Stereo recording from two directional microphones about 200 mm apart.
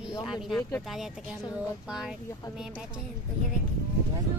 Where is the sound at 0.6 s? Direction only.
10° left (ahead or behind).